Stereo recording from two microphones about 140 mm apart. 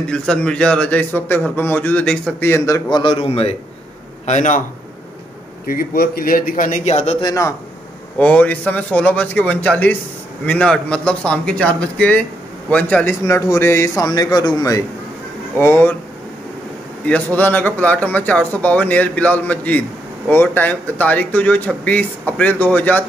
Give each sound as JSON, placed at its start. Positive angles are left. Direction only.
{"t": 0.1, "sound": "a man's voice", "side_deg": 5}
{"t": 3.0, "sound": "a man's voice", "side_deg": 40}
{"t": 4.3, "sound": "a man's voice", "side_deg": 60}
{"t": 5.7, "sound": "a man's voice", "side_deg": 90}
{"t": 7.2, "sound": "a man's voice", "side_deg": 25}
{"t": 8.2, "sound": "a man's voice", "side_deg": 10}
{"t": 13.2, "sound": "a man's voice", "side_deg": 20}
{"t": 17.0, "sound": "a man's voice", "side_deg": 10}